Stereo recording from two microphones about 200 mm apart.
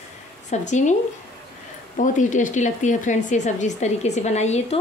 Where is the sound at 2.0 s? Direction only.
40° left (ahead or behind).